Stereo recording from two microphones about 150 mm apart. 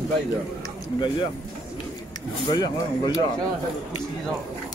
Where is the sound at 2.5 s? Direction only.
25° left (ahead or behind).